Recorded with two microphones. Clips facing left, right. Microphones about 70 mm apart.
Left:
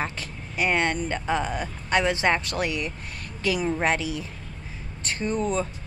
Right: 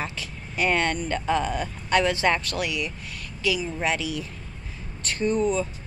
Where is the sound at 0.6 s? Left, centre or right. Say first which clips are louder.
Even; centre.